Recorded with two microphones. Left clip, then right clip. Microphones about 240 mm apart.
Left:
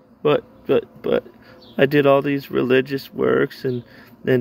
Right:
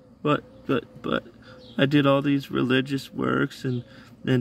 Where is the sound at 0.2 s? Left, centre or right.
Centre.